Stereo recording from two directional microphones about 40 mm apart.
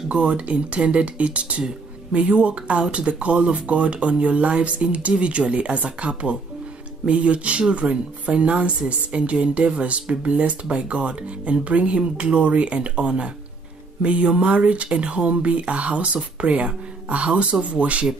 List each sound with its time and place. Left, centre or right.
0.1 s speech: right